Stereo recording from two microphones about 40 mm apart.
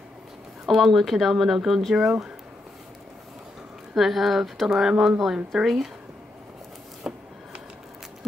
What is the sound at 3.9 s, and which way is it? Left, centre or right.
Speech, centre.